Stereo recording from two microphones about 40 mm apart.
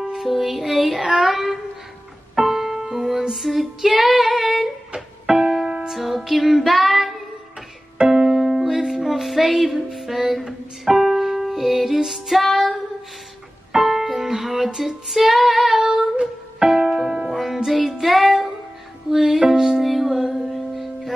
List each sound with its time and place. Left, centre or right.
0.0 s music: centre
1.0 s child singing: centre
2.3 s music: centre
4.0 s female singing: centre
4.9 s music: right
5.9 s music: centre
8.0 s music: centre
13.8 s music: centre
15.8 s music: centre
17.3 s music: centre
19.8 s music: centre
20.5 s music: centre